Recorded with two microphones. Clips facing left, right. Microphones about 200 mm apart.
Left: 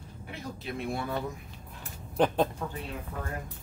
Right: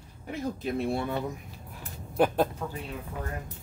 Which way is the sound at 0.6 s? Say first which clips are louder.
Right 4 dB; 35° right (ahead or behind).